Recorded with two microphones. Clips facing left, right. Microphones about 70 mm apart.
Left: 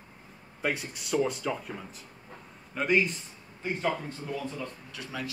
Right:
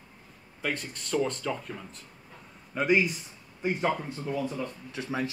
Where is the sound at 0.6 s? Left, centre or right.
Centre.